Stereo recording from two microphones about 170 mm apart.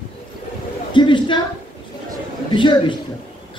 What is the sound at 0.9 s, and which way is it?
Speech, 30° left (ahead or behind).